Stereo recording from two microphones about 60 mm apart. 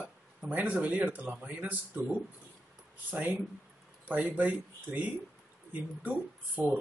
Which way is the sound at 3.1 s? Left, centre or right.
Right.